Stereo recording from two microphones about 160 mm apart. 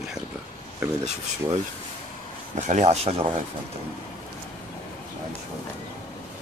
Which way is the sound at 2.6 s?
45° right (ahead or behind).